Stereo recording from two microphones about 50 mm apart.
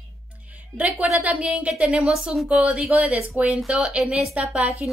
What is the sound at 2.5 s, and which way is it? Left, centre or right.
Speech, right.